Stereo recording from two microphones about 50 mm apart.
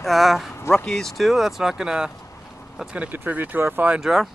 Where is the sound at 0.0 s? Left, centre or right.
Centre.